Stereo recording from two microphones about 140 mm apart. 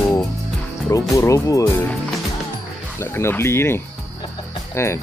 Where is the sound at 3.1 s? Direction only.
20° left (ahead or behind).